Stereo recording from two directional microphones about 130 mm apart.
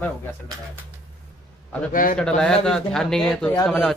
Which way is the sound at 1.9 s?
90° left.